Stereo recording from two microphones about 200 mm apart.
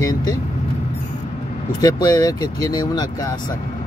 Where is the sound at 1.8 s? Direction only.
20° left (ahead or behind).